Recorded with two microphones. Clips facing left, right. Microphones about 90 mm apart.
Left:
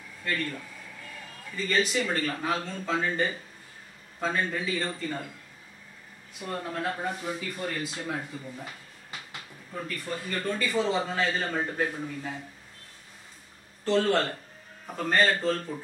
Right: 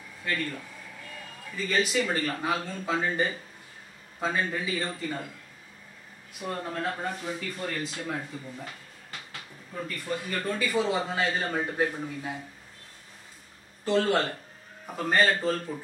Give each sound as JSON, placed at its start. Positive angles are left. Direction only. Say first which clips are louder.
{"t": 0.2, "sound": "a man's voice", "louder": "even", "side_deg": -5}
{"t": 6.4, "sound": "speech", "louder": "even", "side_deg": 0}
{"t": 9.8, "sound": "a man's voice", "louder": "right 1 dB", "side_deg": -5}
{"t": 13.8, "sound": "a man's voice", "louder": "even", "side_deg": -10}